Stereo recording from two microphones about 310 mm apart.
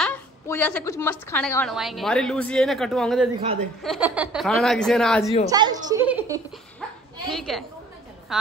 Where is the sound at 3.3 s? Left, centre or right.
Centre.